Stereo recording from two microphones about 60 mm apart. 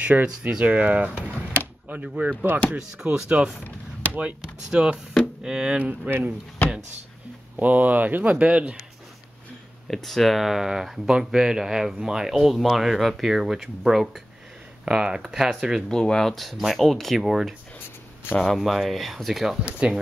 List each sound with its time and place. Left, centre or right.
0.0 s speech: right
3.0 s speech: centre
5.8 s speech: right
7.5 s speech: right
9.8 s speech: centre
14.9 s speech: centre
15.9 s speech: centre